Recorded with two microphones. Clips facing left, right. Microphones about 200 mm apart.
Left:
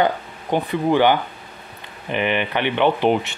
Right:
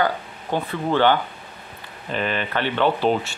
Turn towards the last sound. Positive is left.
turn(degrees=20)  # may be behind; listen again after turning